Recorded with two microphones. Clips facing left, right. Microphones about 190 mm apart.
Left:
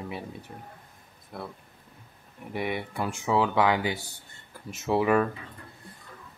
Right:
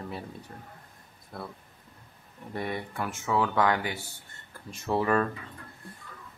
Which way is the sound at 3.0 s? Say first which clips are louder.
Left 2 dB; 15° left (ahead or behind).